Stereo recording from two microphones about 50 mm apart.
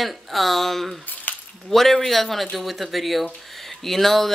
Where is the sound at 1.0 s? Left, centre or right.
Left.